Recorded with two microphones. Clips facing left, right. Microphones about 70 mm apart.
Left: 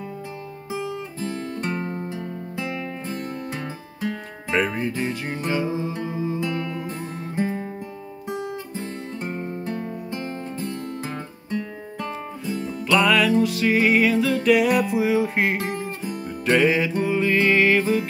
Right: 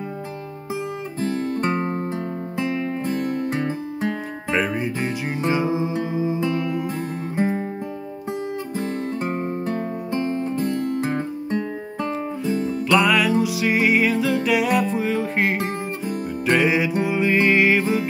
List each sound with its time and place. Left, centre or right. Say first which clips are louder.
1.7 s music: right 5 dB; right
2.5 s music: right 6 dB; right
4.5 s music: even; centre
7.3 s music: right 3 dB; right
8.3 s music: right 2 dB; right
12.9 s music: even; centre
16.4 s music: even; centre